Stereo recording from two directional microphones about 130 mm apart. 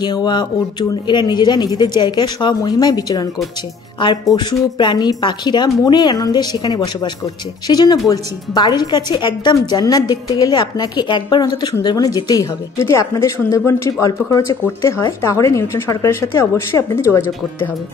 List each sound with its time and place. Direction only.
0.0 s a woman's voice: 35° left (ahead or behind)